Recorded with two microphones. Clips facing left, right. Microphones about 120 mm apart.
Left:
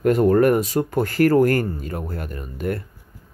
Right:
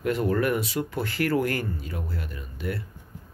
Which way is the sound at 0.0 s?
45° left (ahead or behind).